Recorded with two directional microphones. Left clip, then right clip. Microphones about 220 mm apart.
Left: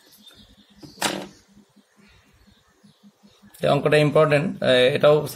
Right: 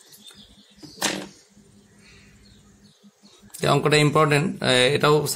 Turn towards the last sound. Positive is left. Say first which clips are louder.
# left 2 dB
turn(degrees=-45)  # may be behind; listen again after turning